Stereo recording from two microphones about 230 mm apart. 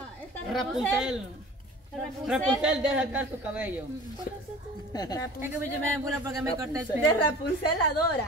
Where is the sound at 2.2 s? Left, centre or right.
Centre.